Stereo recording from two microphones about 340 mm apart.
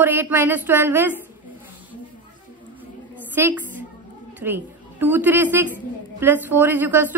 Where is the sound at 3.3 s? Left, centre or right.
Centre.